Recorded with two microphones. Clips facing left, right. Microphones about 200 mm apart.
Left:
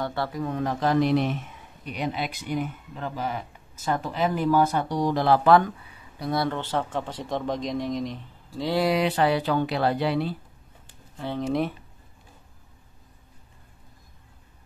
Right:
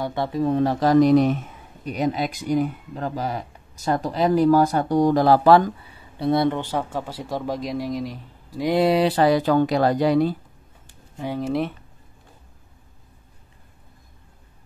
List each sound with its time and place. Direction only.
0.0 s speech: 20° right (ahead or behind); by 5.7 s 35° right (ahead or behind)
6.1 s speech: 25° right (ahead or behind); by 8.2 s 5° right (ahead or behind)
8.5 s speech: 20° right (ahead or behind); by 10.3 s 45° right (ahead or behind)
11.1 s speech: 10° right (ahead or behind)